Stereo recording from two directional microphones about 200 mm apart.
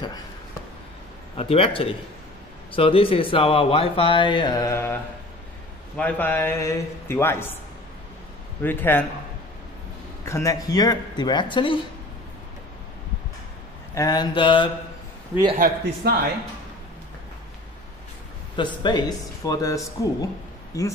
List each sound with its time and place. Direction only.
1.3 s speech: 30° left (ahead or behind)
5.9 s a man's voice: 5° left (ahead or behind)
8.6 s a man's voice: 10° left (ahead or behind)
10.2 s speech: 15° left (ahead or behind)
13.9 s speech: 20° left (ahead or behind)
15.5 s a man's voice: 45° right (ahead or behind)
18.6 s speech: 20° left (ahead or behind)